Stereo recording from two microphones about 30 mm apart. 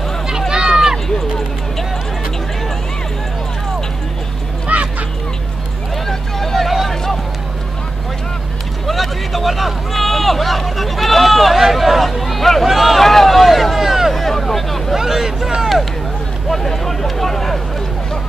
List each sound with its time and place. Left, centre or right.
0.5 s run: right
4.7 s music: right
6.0 s vehicle: centre
8.8 s vehicle: centre
11.6 s a sound: centre
13.0 s vehicle: centre
14.1 s vehicle: centre
15.0 s vehicle: centre
15.6 s a sound: centre
16.4 s a sound: centre